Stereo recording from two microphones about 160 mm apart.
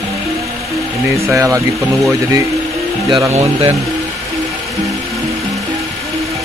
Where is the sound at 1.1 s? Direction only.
20° right (ahead or behind).